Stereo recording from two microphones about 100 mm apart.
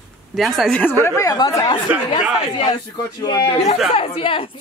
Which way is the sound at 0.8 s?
25° left (ahead or behind).